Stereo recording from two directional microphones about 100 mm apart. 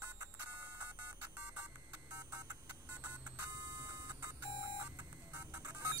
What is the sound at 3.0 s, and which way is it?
Music, 15° right (ahead or behind).